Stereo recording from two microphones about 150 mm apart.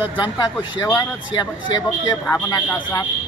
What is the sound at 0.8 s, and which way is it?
A woman's voice, 20° left (ahead or behind).